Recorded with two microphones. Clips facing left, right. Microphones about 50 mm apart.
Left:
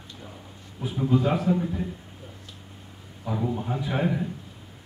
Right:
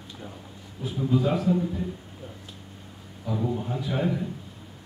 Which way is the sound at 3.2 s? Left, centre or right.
Centre.